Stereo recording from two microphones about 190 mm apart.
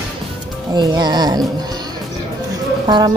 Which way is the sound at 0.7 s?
20° right (ahead or behind).